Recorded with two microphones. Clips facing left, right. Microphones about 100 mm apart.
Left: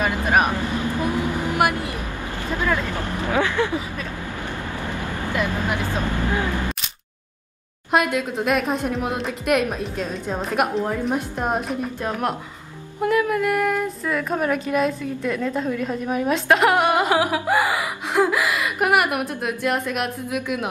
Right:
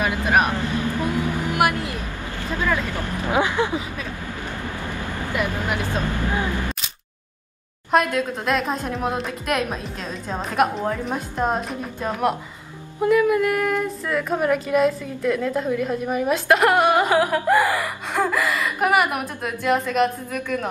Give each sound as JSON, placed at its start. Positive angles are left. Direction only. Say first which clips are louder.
{"t": 0.3, "sound": "vehicle", "louder": "even", "side_deg": 15}
{"t": 2.9, "sound": "a sound", "louder": "left 1 dB", "side_deg": 20}
{"t": 3.3, "sound": "vehicle", "louder": "right 1 dB", "side_deg": -15}
{"t": 5.3, "sound": "vehicle", "louder": "left 1 dB", "side_deg": -15}
{"t": 7.9, "sound": "female singing", "louder": "right 1 dB", "side_deg": 5}